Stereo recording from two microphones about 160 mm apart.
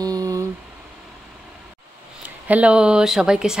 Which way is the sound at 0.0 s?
25° right (ahead or behind).